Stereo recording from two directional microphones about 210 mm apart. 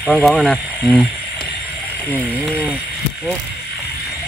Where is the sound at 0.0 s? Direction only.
5° left (ahead or behind).